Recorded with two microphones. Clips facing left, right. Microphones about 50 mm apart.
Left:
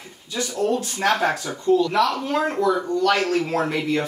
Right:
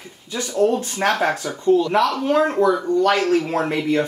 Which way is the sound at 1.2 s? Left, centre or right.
Right.